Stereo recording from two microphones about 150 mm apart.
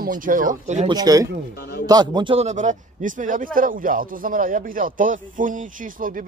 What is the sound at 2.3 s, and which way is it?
Speech, 50° right (ahead or behind).